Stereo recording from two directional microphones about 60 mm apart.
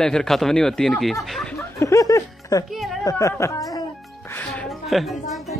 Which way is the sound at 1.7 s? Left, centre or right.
Left.